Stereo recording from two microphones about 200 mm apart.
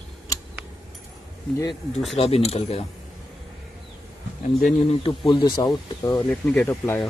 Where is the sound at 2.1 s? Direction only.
30° left (ahead or behind).